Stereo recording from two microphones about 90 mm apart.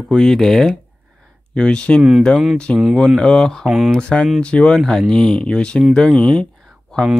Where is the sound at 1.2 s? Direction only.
10° left (ahead or behind).